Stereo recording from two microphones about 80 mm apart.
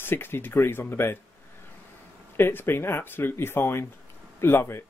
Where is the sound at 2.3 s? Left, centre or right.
Left.